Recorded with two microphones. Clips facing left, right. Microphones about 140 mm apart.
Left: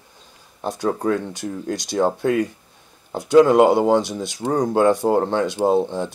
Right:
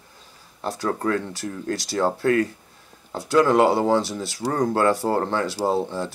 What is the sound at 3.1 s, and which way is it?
Speech, 20° left (ahead or behind).